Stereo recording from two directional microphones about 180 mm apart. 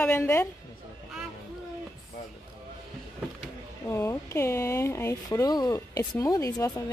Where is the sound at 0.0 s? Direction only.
10° left (ahead or behind).